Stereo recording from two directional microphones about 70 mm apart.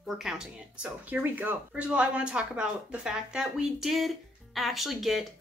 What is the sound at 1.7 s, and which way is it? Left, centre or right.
Speech, centre.